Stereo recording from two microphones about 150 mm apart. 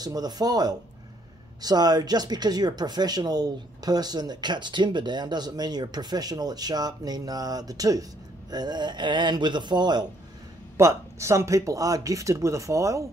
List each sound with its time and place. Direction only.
0.0 s speech: 25° right (ahead or behind)